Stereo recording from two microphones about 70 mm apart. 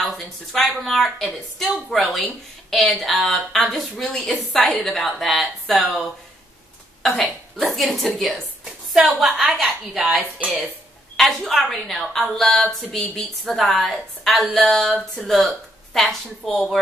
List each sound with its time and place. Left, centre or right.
0.0 s a woman's voice: centre
11.1 s a woman's voice: centre